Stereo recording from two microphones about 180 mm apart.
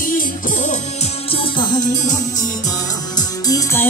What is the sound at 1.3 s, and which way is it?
Music, 25° left (ahead or behind).